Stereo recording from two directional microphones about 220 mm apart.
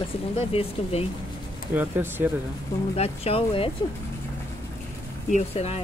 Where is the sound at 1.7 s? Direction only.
10° right (ahead or behind).